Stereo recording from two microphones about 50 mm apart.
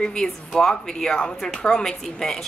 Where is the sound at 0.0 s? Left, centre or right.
Centre.